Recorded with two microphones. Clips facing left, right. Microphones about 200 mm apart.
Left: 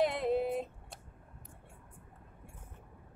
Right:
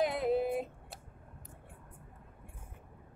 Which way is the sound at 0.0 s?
Centre (ahead or behind).